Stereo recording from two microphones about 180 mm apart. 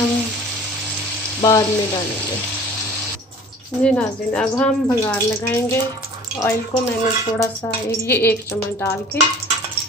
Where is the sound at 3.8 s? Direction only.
5° left (ahead or behind).